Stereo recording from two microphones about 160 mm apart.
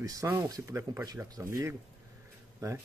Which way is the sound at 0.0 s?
20° right (ahead or behind).